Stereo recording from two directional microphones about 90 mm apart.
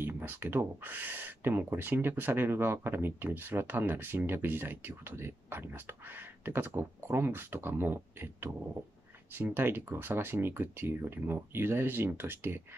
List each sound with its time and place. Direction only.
0.0 s speech: 25° right (ahead or behind)